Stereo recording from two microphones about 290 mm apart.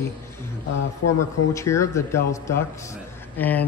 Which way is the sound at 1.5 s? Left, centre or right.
Centre.